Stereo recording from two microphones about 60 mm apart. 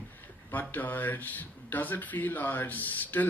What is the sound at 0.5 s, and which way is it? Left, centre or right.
Speech, left.